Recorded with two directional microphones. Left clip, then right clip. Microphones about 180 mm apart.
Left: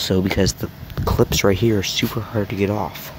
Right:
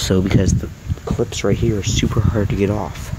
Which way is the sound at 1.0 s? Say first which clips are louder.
Left 3 dB; 20° left (ahead or behind).